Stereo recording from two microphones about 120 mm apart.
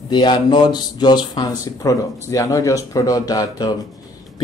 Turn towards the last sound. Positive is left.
turn(degrees=30)  # may be behind; listen again after turning